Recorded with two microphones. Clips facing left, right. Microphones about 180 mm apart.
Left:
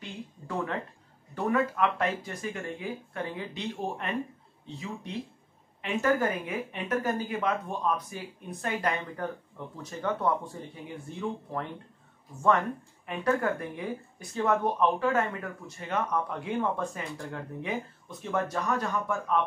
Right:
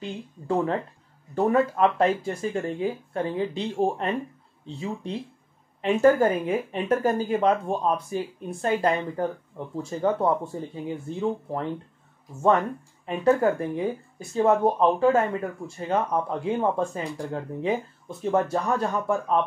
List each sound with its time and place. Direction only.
1.3 s speech: 30° right (ahead or behind)
13.0 s speech: 25° right (ahead or behind)